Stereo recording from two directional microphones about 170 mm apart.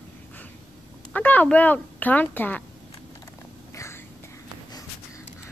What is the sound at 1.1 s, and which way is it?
Speech, 10° left (ahead or behind).